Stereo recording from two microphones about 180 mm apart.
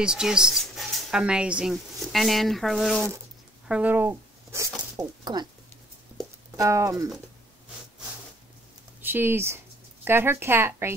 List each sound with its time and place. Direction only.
0.0 s speech: 5° right (ahead or behind); by 5.5 s 25° right (ahead or behind)
6.5 s speech: 15° right (ahead or behind)
9.0 s speech: 10° right (ahead or behind)